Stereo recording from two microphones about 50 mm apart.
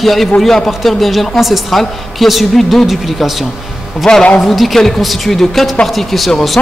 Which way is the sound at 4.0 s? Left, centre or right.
Centre.